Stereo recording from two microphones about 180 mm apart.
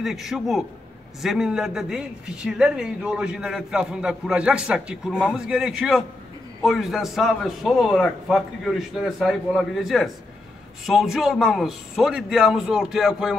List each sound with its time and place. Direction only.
0.0 s a man's voice: centre (ahead or behind)